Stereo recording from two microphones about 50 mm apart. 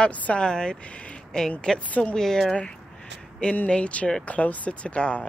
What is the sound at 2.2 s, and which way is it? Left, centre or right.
Speech, centre.